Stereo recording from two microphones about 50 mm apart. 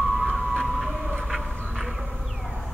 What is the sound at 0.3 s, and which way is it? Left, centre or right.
Vehicle, centre.